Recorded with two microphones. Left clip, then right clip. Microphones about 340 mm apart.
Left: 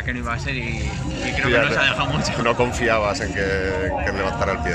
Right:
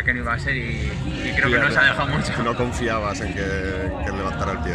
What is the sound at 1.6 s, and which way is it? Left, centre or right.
Speech, centre.